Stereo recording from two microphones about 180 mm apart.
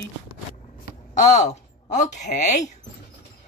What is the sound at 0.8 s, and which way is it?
A woman's voice, 40° left (ahead or behind).